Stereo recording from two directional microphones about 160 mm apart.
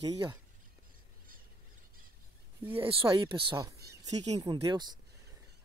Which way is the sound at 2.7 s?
35° right (ahead or behind).